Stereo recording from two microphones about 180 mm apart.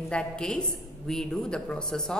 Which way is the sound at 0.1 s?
5° left (ahead or behind).